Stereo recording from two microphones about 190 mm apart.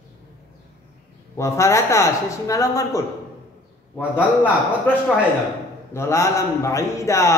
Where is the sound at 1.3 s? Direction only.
15° left (ahead or behind).